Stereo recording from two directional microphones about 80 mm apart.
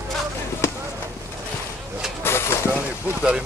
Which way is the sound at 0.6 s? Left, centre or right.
Left.